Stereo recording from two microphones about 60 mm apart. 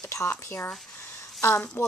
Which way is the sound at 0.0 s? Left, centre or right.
Left.